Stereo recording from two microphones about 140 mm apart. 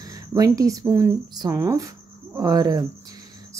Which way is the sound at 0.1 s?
25° right (ahead or behind).